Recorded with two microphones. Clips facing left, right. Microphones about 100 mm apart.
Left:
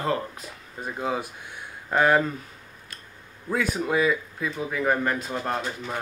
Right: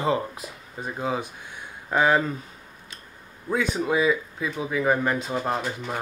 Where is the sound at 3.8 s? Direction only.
5° right (ahead or behind).